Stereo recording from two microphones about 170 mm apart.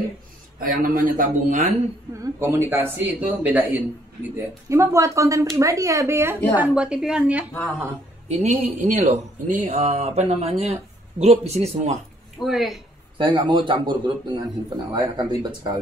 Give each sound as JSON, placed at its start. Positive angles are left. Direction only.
{"t": 0.6, "sound": "speech", "side_deg": -55}
{"t": 2.1, "sound": "a woman's voice", "side_deg": -15}
{"t": 8.3, "sound": "speech", "side_deg": -40}
{"t": 12.4, "sound": "a woman's voice", "side_deg": 0}
{"t": 13.2, "sound": "a man's voice", "side_deg": -30}